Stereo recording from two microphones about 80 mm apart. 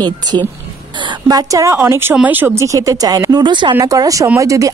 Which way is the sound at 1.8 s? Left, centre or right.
Right.